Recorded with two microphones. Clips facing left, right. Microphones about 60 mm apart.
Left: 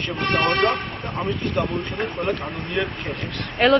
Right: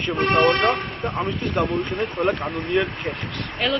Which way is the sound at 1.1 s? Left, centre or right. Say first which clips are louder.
Left 1 dB; centre.